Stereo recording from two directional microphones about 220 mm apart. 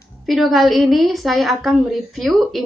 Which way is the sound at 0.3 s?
Centre (ahead or behind).